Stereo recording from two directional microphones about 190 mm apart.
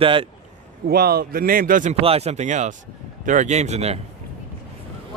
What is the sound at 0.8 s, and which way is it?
Speech, 55° right (ahead or behind).